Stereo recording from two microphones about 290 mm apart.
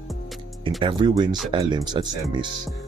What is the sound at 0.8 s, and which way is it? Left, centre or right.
Speech, centre.